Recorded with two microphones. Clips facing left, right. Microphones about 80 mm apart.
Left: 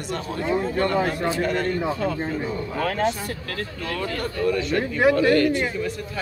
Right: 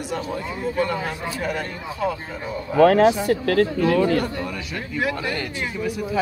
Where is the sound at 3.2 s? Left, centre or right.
Right.